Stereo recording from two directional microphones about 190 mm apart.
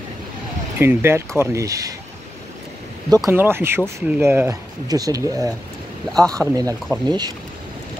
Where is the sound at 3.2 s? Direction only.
10° right (ahead or behind).